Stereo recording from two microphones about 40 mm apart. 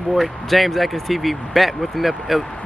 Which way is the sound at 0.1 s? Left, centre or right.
Centre.